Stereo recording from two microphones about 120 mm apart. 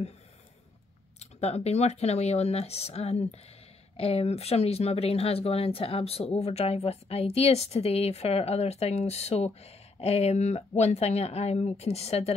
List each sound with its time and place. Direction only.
1.2 s speech: 65° left (ahead or behind)